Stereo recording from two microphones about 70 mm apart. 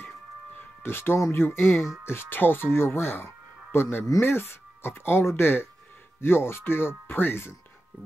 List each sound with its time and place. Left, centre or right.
0.6 s speech: left